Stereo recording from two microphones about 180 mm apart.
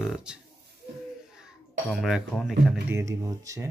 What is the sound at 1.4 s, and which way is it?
A child's voice, centre (ahead or behind).